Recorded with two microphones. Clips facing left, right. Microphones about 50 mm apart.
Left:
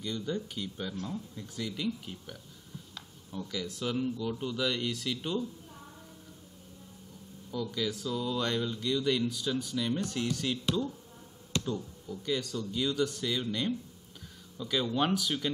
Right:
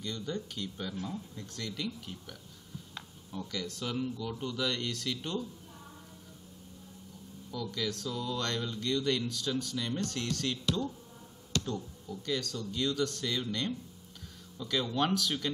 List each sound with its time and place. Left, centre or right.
0.0 s speech: centre
1.0 s speech: centre
1.4 s speech: centre
7.5 s speech: centre
11.5 s a sound: left
12.1 s speech: centre